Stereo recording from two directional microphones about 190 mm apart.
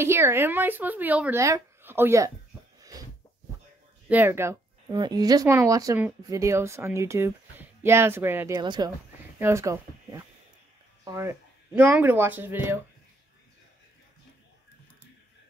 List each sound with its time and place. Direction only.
0.0 s speech: 15° right (ahead or behind)
2.8 s a sound: 20° right (ahead or behind)
4.1 s speech: 10° right (ahead or behind)
8.5 s speech: 25° right (ahead or behind)